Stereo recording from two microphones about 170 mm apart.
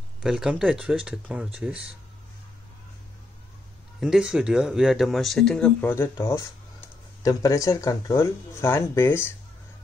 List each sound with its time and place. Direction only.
0.2 s speech: 5° right (ahead or behind)
4.0 s speech: 5° right (ahead or behind); by 6.0 s 15° left (ahead or behind)
7.2 s speech: 20° left (ahead or behind)